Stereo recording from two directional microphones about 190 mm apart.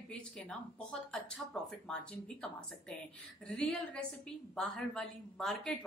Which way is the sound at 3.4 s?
5° left (ahead or behind).